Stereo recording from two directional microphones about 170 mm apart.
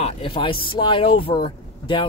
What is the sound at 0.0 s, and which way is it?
Speech, 35° left (ahead or behind).